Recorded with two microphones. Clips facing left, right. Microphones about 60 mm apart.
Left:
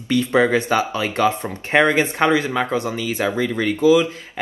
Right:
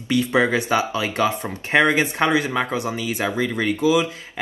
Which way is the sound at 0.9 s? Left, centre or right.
Left.